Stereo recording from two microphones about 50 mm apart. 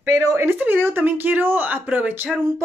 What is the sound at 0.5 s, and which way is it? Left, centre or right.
Speech, right.